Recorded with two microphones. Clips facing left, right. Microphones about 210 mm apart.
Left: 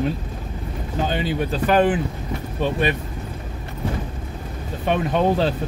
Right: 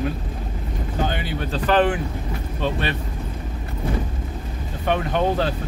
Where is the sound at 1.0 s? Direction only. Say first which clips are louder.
Left 7 dB; 20° left (ahead or behind).